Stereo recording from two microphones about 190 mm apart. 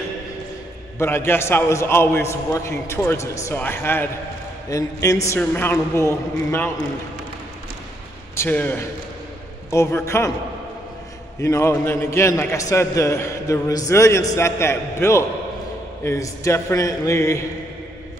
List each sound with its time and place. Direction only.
0.9 s a man's voice: 15° left (ahead or behind)
8.4 s a man's voice: 10° left (ahead or behind)
11.4 s a man's voice: 15° left (ahead or behind)